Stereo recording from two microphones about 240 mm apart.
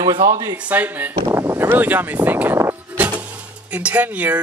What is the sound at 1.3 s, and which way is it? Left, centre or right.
Music, centre.